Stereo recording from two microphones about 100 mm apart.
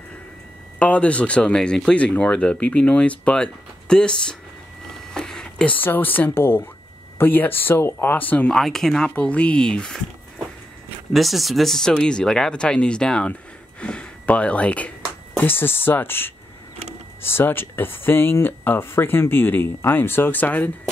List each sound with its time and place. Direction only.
0.7 s speech: 15° left (ahead or behind)
5.1 s a sound: 5° left (ahead or behind)
5.8 s speech: 20° left (ahead or behind)
11.1 s speech: centre (ahead or behind); by 20.7 s 20° left (ahead or behind)